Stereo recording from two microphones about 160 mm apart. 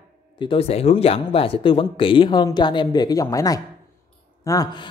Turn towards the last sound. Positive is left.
turn(degrees=25)  # may be behind; listen again after turning